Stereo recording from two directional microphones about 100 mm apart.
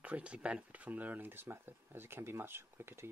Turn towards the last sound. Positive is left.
turn(degrees=-25)  # may be behind; listen again after turning